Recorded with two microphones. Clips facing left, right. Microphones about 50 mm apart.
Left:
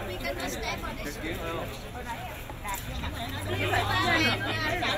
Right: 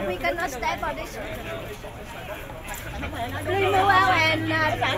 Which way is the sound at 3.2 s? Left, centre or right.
Right.